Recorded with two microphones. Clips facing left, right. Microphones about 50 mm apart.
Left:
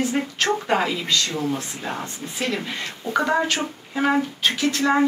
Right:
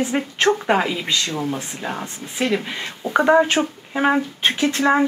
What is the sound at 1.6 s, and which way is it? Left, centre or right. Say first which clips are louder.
Speech: right 2 dB; centre.